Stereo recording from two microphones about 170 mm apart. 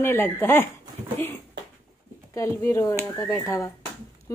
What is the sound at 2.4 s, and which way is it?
A woman's voice, 15° left (ahead or behind).